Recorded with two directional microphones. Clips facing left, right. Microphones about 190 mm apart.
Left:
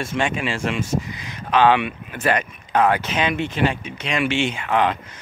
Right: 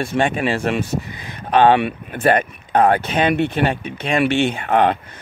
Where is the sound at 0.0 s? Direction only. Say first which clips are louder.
Right 4 dB; 55° right (ahead or behind).